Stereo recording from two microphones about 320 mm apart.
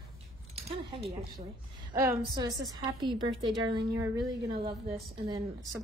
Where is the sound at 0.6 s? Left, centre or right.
Centre.